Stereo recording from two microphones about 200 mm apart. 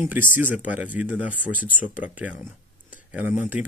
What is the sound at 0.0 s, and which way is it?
Speech, 10° right (ahead or behind).